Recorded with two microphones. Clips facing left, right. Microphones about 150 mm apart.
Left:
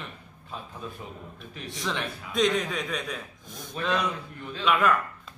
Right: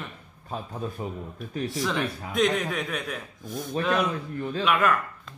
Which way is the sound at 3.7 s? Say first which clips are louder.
Right 4 dB; 40° right (ahead or behind).